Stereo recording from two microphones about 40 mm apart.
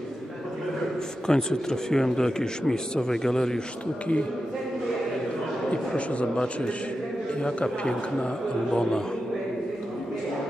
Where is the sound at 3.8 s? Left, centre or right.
Left.